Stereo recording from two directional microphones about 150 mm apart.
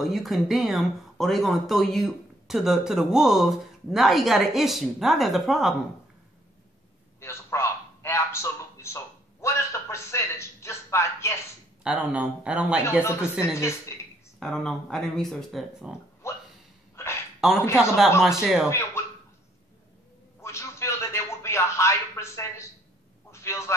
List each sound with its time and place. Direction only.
0.0 s speech: centre (ahead or behind)
7.2 s a sound: 20° left (ahead or behind)
11.8 s speech: 5° right (ahead or behind)
12.8 s speech: 15° left (ahead or behind)
14.4 s speech: 5° left (ahead or behind)
16.2 s a sound: 15° left (ahead or behind)
17.4 s speech: centre (ahead or behind)
18.7 s speech: 20° left (ahead or behind)
20.3 s a sound: 20° left (ahead or behind)